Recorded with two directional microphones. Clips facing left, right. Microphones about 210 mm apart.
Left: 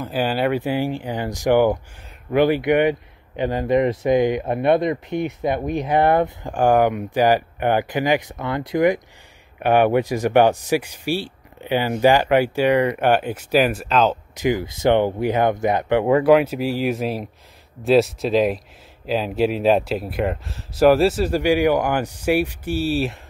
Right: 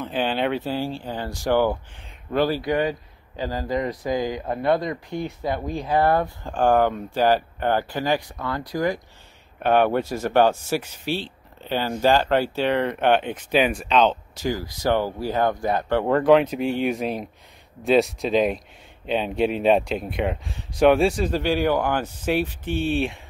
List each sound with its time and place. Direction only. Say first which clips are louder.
0.0 s speech: left 3 dB; 10° left (ahead or behind)
14.3 s speech: left 5 dB; 20° left (ahead or behind)